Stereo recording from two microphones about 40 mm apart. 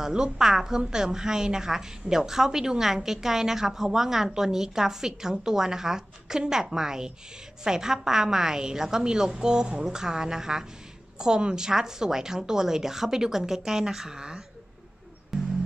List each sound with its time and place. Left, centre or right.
0.0 s a woman's voice: centre
15.3 s music: centre